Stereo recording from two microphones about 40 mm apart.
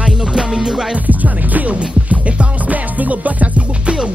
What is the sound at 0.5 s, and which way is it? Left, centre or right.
Music, centre.